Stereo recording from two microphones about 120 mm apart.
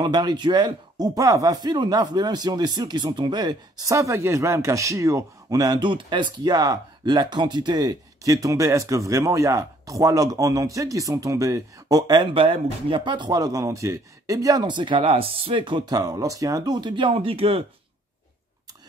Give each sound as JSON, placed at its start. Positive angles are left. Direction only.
{"t": 0.0, "sound": "speech", "side_deg": -35}